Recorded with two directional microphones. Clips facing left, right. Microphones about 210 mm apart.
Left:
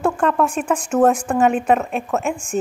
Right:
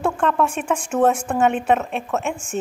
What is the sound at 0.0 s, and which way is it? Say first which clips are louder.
Speech: left 2 dB; 5° left (ahead or behind).